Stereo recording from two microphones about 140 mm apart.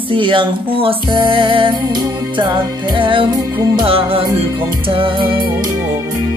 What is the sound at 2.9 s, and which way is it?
Music, 35° right (ahead or behind).